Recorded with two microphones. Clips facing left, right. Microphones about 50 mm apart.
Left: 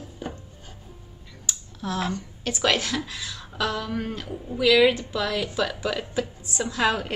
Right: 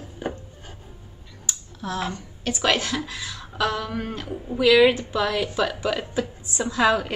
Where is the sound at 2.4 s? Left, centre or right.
Centre.